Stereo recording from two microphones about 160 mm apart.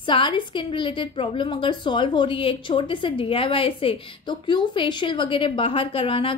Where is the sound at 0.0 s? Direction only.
30° left (ahead or behind).